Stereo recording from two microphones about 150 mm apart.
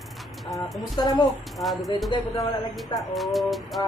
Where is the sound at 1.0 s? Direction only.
25° left (ahead or behind).